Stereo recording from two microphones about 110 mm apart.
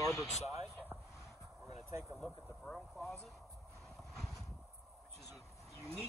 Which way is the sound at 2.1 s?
5° left (ahead or behind).